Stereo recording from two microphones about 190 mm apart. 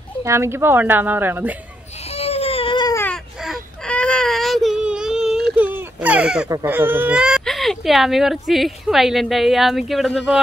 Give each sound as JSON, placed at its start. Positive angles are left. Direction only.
{"t": 0.2, "sound": "speech", "side_deg": -15}
{"t": 2.0, "sound": "baby cry", "side_deg": 30}
{"t": 3.4, "sound": "baby cry", "side_deg": 0}
{"t": 5.6, "sound": "a sound", "side_deg": -10}
{"t": 6.5, "sound": "speech", "side_deg": -10}